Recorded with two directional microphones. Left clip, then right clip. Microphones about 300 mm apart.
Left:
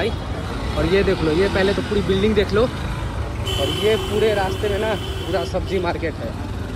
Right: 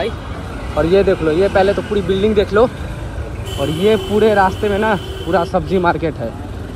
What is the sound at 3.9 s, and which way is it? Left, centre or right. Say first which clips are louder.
Speech: right 8 dB; right.